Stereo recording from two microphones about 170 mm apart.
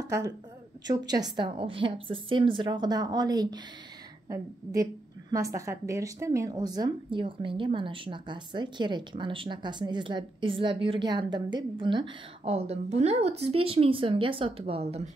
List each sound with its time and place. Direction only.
0.8 s a woman's voice: 25° right (ahead or behind)
5.3 s a woman's voice: 20° right (ahead or behind); by 15.0 s 35° right (ahead or behind)